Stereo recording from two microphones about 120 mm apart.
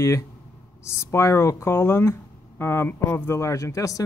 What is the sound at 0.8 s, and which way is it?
Speech, 25° left (ahead or behind).